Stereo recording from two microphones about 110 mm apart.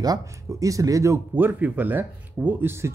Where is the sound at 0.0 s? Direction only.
35° right (ahead or behind).